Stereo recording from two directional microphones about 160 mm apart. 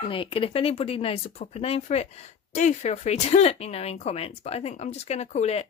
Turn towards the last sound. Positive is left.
turn(degrees=45)  # may be behind; listen again after turning